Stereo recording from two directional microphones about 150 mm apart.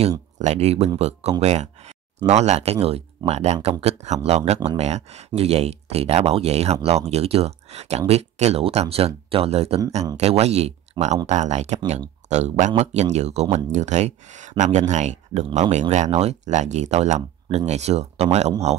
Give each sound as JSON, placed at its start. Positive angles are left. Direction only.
{"t": 0.4, "sound": "speech", "side_deg": -45}